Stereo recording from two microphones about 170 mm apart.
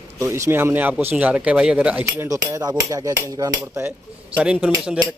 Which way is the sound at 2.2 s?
20° right (ahead or behind).